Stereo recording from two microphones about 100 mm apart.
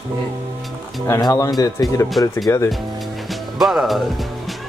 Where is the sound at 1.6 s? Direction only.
40° left (ahead or behind).